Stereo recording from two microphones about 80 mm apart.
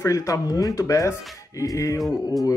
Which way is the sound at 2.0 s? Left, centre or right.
Centre.